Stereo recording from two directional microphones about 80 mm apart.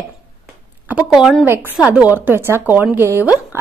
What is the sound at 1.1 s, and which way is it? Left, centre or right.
Speech, centre.